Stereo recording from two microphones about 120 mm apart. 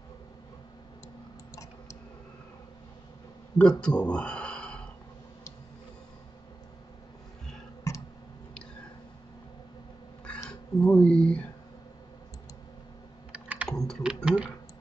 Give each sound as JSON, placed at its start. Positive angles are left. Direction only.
{"t": 1.5, "sound": "a sound", "side_deg": 25}
{"t": 3.5, "sound": "speech", "side_deg": 10}
{"t": 7.9, "sound": "tick", "side_deg": 25}
{"t": 10.8, "sound": "speech", "side_deg": 10}
{"t": 13.3, "sound": "computer keyboard", "side_deg": -10}
{"t": 13.7, "sound": "typing", "side_deg": 5}
{"t": 14.0, "sound": "a sound", "side_deg": -10}